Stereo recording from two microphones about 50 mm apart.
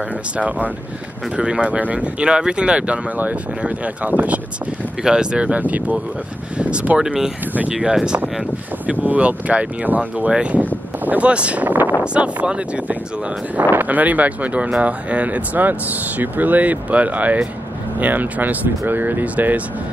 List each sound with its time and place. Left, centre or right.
0.4 s speech: right
5.0 s speech: centre
5.6 s speech: right
7.0 s speech: centre
9.0 s speech: right
12.0 s speech: right